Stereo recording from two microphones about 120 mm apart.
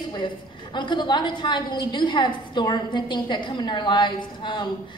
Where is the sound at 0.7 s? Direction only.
40° left (ahead or behind).